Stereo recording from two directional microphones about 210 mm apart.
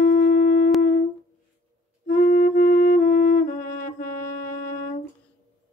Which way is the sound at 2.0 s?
40° left (ahead or behind).